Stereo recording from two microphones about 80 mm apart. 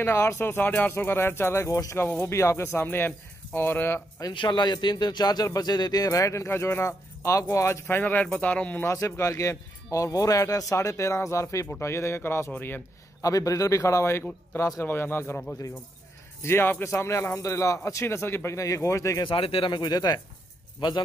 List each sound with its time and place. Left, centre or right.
0.0 s speech: left
4.3 s a man's voice: left; by 8.8 s centre
8.8 s speech: left
13.2 s speech: left
16.4 s speech: left
19.2 s a man's voice: left